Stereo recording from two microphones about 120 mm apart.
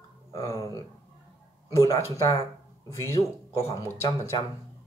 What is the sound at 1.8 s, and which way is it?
Speech, 25° left (ahead or behind).